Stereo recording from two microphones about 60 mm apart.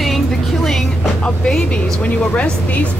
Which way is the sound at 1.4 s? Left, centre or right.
Centre.